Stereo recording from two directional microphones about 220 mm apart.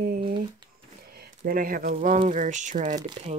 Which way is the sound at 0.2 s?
20° right (ahead or behind).